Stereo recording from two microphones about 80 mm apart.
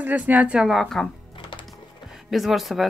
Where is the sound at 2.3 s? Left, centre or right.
Centre.